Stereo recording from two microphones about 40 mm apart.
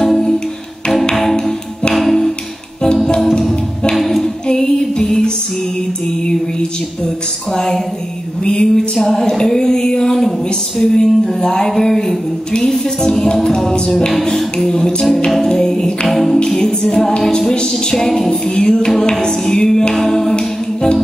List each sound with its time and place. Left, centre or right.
0.0 s music: centre
1.3 s music: centre
2.0 s music: centre
3.3 s music: centre
3.9 s a sound: centre
4.5 s music: centre
7.5 s a sound: centre
13.7 s music: centre
14.1 s a sound: centre
16.1 s music: centre
16.4 s a sound: centre
19.9 s music: centre